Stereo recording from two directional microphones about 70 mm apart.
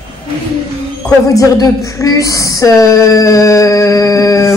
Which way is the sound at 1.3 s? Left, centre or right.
Left.